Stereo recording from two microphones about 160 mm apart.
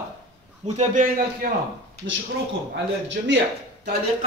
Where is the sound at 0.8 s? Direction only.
55° right (ahead or behind).